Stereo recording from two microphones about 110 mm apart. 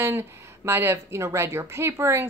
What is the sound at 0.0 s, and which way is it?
Speech, 20° right (ahead or behind).